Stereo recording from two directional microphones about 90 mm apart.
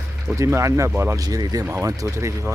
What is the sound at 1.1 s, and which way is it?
Speech, 45° right (ahead or behind).